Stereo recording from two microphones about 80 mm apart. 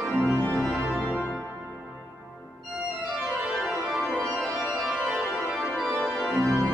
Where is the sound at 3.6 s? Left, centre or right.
Centre.